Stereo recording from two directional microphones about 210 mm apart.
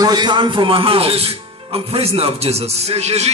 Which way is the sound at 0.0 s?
20° right (ahead or behind).